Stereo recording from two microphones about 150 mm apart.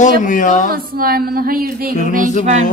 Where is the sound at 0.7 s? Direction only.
80° right.